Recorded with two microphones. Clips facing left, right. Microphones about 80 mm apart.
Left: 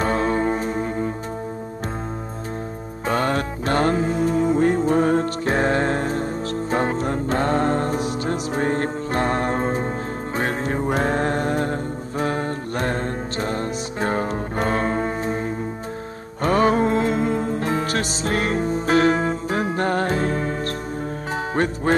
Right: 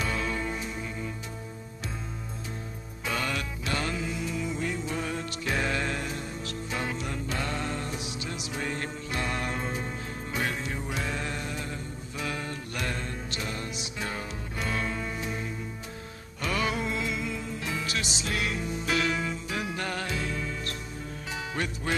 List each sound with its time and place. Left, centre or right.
0.0 s music: left
3.1 s music: left